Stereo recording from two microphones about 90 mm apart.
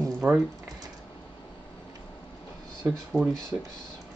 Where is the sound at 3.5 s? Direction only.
20° right (ahead or behind).